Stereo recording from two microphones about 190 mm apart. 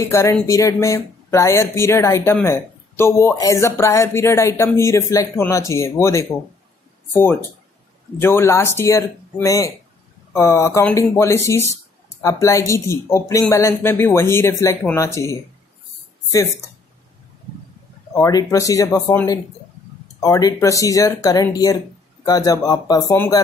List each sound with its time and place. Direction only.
0.1 s speech: 15° left (ahead or behind)
18.1 s speech: 15° left (ahead or behind)